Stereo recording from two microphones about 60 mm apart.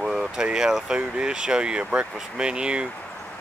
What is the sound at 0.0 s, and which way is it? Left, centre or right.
Speech, centre.